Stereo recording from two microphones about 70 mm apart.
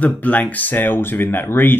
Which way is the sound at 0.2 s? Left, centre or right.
Left.